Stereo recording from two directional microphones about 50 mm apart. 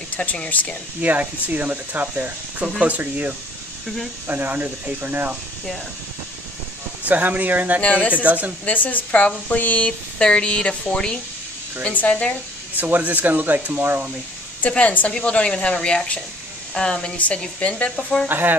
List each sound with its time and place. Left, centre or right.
0.1 s speech: left
1.0 s speech: right
7.1 s speech: right
7.8 s speech: left
8.1 s speech: right
8.6 s speech: left; by 11.1 s centre
11.9 s speech: left
12.7 s speech: right
13.7 s speech: right
14.7 s speech: left
18.3 s speech: right